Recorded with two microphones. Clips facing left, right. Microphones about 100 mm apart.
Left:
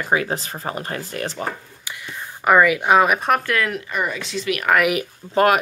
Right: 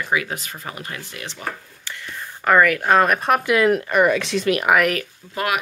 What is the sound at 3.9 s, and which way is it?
Speech, 70° right (ahead or behind).